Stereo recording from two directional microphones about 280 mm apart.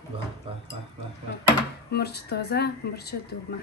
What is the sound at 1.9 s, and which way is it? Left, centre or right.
A woman's voice, left.